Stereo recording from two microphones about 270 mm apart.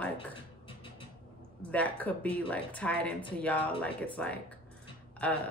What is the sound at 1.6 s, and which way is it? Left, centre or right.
A woman's voice, centre.